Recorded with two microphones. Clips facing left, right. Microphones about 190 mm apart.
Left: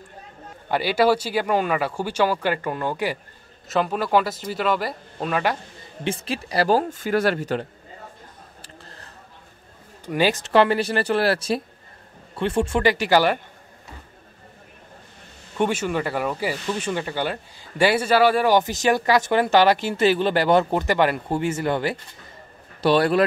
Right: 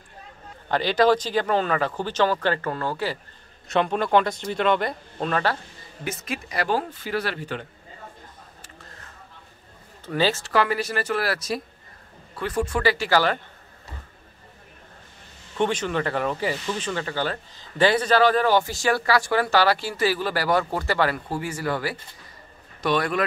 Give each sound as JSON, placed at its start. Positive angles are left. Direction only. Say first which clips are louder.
{"t": 0.7, "sound": "speech", "louder": "even", "side_deg": 10}
{"t": 3.6, "sound": "a man's voice", "louder": "even", "side_deg": 5}
{"t": 6.0, "sound": "speech", "louder": "left 4 dB", "side_deg": 30}
{"t": 8.6, "sound": "a sound", "louder": "left 2 dB", "side_deg": 35}
{"t": 10.0, "sound": "speech", "louder": "left 2 dB", "side_deg": 15}
{"t": 15.5, "sound": "a man's voice", "louder": "left 1 dB", "side_deg": 10}